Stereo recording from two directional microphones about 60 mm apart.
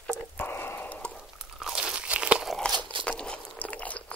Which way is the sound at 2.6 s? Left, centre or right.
Centre.